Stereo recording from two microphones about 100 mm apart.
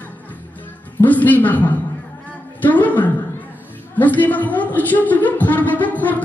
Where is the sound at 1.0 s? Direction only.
15° left (ahead or behind).